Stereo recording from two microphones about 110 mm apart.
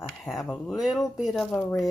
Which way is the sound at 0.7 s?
Centre (ahead or behind).